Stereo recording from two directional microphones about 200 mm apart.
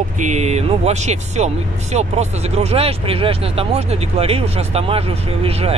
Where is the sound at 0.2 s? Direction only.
35° right (ahead or behind).